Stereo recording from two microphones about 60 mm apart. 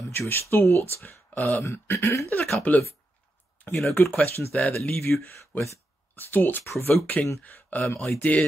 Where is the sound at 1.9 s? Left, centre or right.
Left.